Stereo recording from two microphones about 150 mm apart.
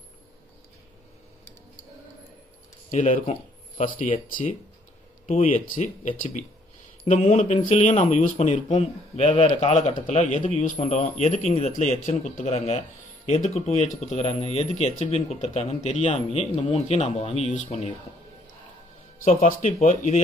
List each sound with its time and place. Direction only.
2.9 s speech: 55° left (ahead or behind)
7.1 s speech: 45° left (ahead or behind)
10.6 s speech: 60° left (ahead or behind)
10.9 s speech: 45° left (ahead or behind)
19.2 s speech: 55° left (ahead or behind)